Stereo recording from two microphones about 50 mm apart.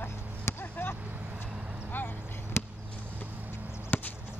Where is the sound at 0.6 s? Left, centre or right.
Left.